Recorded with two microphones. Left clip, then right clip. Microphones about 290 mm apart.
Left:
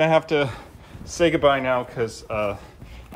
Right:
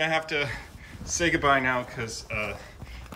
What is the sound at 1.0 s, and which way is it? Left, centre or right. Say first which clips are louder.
Speech: left 6 dB; centre.